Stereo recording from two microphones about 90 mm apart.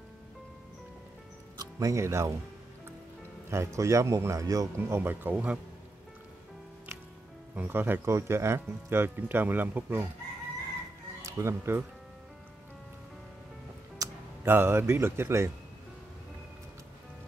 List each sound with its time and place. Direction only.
1.6 s speech: 35° right (ahead or behind)
3.4 s a man's voice: 35° right (ahead or behind)
4.7 s speech: 25° right (ahead or behind)
7.5 s speech: 15° right (ahead or behind)
11.2 s speech: 30° right (ahead or behind)
14.0 s music: 40° right (ahead or behind)
14.4 s speech: 25° right (ahead or behind)